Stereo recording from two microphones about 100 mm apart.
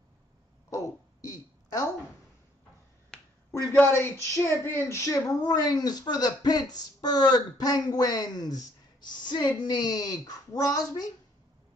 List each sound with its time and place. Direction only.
0.7 s a sound: 35° left (ahead or behind)
3.1 s finger snapping: 5° left (ahead or behind)
3.6 s speech: 25° left (ahead or behind)